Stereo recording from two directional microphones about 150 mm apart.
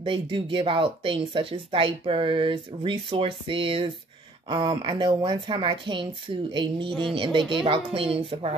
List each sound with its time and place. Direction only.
0.0 s speech: 35° right (ahead or behind)